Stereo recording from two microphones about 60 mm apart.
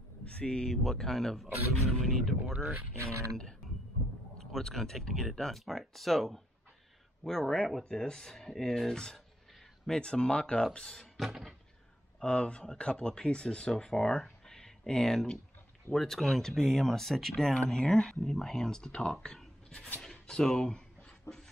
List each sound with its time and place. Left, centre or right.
0.2 s speech: centre
4.5 s speech: centre
11.2 s speech: centre
12.2 s speech: centre
21.3 s beatboxing: left